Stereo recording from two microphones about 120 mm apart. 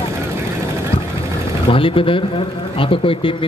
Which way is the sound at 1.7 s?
50° left (ahead or behind).